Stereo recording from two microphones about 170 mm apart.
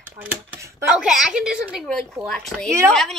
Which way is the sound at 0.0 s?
10° right (ahead or behind).